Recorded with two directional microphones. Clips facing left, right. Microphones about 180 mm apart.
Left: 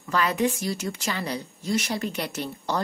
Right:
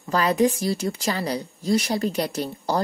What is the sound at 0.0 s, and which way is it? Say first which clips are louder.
Speech: right 4 dB; 35° right (ahead or behind).